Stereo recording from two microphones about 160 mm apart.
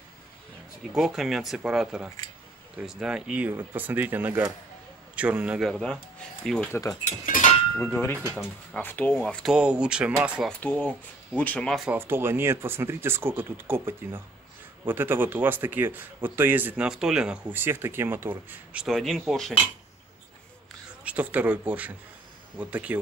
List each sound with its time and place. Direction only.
0.9 s speech: centre (ahead or behind)
6.7 s speech: 20° left (ahead or behind)
7.1 s speech: 55° left (ahead or behind)
7.7 s speech: 10° left (ahead or behind); by 10.5 s 5° right (ahead or behind)
10.6 s speech: 10° left (ahead or behind)
11.9 s speech: 15° right (ahead or behind); by 19.5 s centre (ahead or behind)
21.0 s speech: 10° right (ahead or behind)